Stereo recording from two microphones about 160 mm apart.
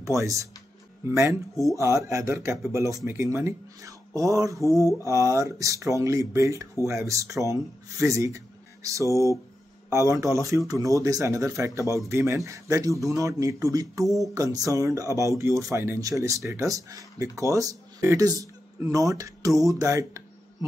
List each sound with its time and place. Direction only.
0.0 s speech: 20° right (ahead or behind)
4.6 s mantra: 20° left (ahead or behind)
5.3 s speech: 20° right (ahead or behind)
9.1 s mantra: 20° left (ahead or behind)
9.8 s speech: 20° right (ahead or behind)
14.0 s speech: centre (ahead or behind)
14.3 s speech: 20° right (ahead or behind)